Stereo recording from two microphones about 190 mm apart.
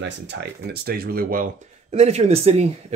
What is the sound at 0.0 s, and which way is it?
Speech, 65° right (ahead or behind).